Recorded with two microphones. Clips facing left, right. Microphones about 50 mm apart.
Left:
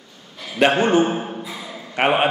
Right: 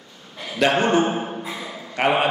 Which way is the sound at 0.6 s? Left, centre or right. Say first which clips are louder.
Left 2 dB; left.